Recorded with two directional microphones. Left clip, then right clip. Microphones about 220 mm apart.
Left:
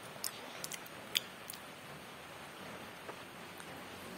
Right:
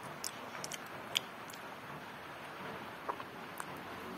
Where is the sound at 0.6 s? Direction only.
15° left (ahead or behind).